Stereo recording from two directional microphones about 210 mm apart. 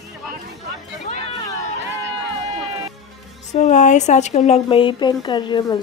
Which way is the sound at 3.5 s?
35° left (ahead or behind).